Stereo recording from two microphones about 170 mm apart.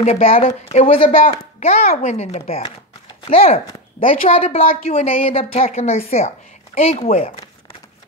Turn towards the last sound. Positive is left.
turn(degrees=40)  # may be behind; listen again after turning